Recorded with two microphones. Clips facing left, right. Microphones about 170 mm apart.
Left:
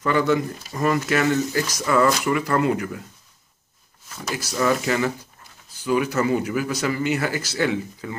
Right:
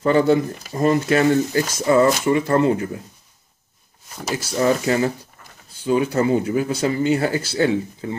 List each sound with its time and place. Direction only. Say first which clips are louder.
0.0 s speech: right 4 dB; 30° right (ahead or behind)
4.3 s speech: right 3 dB; 30° right (ahead or behind)